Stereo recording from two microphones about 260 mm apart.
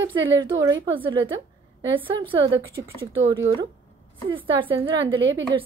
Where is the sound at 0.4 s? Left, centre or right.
Centre.